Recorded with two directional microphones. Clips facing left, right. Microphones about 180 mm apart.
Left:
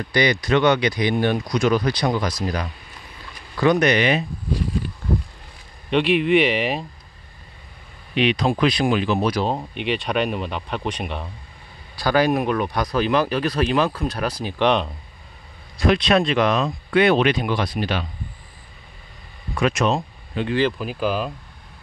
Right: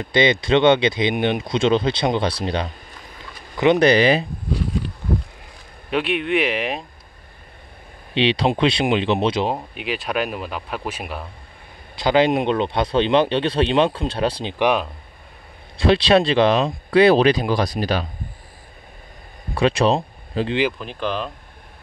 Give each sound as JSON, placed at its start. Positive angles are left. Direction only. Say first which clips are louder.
{"t": 0.0, "sound": "speech", "louder": "right 2 dB", "side_deg": -25}
{"t": 5.9, "sound": "speech", "louder": "left 4 dB", "side_deg": 0}
{"t": 8.1, "sound": "speech", "louder": "right 1 dB", "side_deg": -30}
{"t": 9.6, "sound": "speech", "louder": "left 3 dB", "side_deg": 0}
{"t": 11.9, "sound": "speech", "louder": "right 2 dB", "side_deg": -20}
{"t": 14.6, "sound": "speech", "louder": "even", "side_deg": -5}
{"t": 15.8, "sound": "speech", "louder": "right 2 dB", "side_deg": -30}
{"t": 19.5, "sound": "speech", "louder": "right 3 dB", "side_deg": -30}
{"t": 20.7, "sound": "speech", "louder": "left 2 dB", "side_deg": 5}